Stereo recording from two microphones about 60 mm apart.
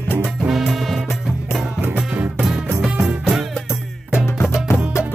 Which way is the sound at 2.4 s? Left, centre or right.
Centre.